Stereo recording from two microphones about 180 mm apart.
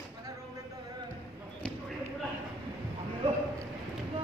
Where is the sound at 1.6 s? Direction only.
5° left (ahead or behind).